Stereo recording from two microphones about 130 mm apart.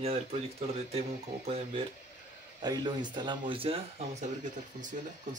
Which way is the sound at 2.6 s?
30° right (ahead or behind).